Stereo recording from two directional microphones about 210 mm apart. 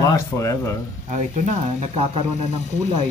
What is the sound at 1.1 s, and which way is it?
Speech, 35° right (ahead or behind).